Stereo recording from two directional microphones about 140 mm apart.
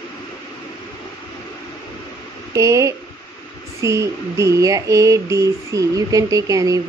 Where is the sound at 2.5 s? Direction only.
20° right (ahead or behind).